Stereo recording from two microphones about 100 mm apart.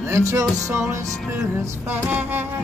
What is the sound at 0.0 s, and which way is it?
Music, 25° right (ahead or behind).